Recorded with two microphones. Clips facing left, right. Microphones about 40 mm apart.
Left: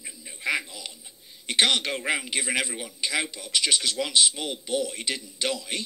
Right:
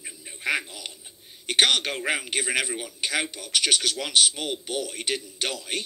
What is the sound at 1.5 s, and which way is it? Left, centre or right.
A man's voice, right.